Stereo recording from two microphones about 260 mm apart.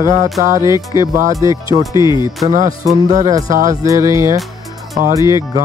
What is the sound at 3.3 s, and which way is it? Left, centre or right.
Speech, centre.